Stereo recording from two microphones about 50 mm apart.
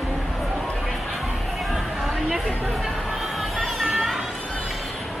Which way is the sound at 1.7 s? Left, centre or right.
Centre.